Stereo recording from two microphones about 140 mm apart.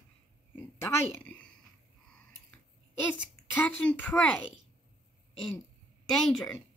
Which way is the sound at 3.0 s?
10° left (ahead or behind).